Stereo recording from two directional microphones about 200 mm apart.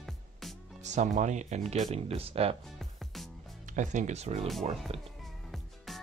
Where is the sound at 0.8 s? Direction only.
35° right (ahead or behind).